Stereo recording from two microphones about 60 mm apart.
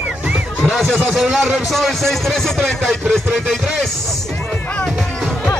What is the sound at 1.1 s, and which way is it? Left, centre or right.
A man's voice, centre.